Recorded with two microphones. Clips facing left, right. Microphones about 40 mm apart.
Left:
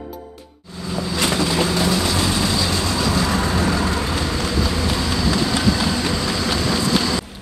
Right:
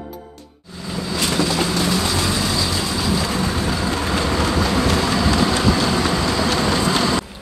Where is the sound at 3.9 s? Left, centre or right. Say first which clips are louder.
Right 2 dB; right.